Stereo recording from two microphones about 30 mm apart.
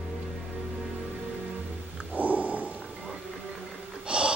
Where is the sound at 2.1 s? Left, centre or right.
Right.